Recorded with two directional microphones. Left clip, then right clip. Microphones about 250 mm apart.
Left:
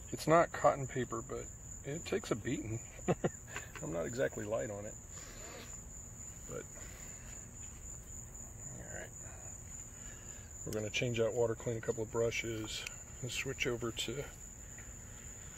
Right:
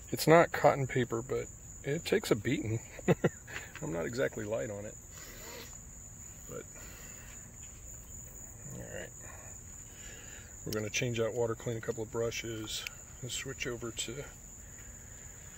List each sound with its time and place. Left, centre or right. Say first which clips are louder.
0.1 s speech: right 5 dB; right
3.8 s cricket: right 2 dB; right
10.7 s speech: right 2 dB; right
13.2 s speech: left 1 dB; centre